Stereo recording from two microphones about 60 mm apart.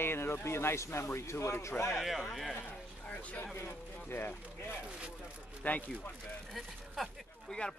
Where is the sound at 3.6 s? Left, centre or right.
Left.